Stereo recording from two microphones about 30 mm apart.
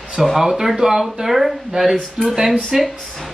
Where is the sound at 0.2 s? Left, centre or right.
Centre.